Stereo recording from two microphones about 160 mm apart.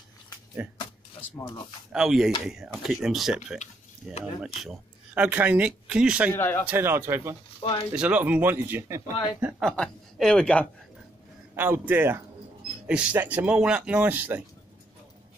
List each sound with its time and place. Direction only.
1.4 s speech: 30° left (ahead or behind)
1.9 s speech: 5° right (ahead or behind)
6.3 s a man's voice: 15° left (ahead or behind)
6.7 s speech: 15° right (ahead or behind)
9.6 s speech: 5° left (ahead or behind)
11.5 s speech: 10° right (ahead or behind)